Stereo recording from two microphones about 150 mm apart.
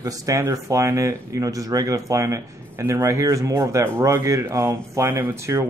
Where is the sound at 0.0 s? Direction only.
20° right (ahead or behind).